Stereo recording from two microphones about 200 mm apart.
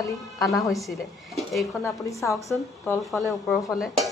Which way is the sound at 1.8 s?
15° left (ahead or behind).